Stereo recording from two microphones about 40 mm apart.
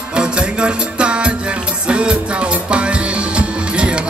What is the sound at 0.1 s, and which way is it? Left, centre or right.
Music, right.